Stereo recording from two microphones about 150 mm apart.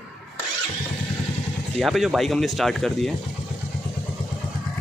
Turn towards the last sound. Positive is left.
turn(degrees=0)  # may be behind; listen again after turning